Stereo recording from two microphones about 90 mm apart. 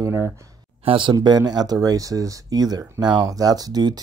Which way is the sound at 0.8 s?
70° right (ahead or behind).